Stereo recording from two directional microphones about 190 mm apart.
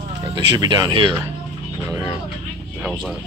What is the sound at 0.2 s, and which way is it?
Speech, 20° right (ahead or behind).